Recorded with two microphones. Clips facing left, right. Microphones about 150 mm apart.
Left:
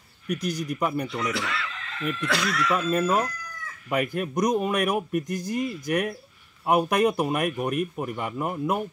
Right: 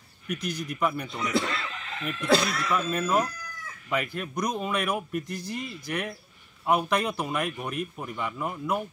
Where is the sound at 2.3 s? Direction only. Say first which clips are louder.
Right 5 dB; 40° right (ahead or behind).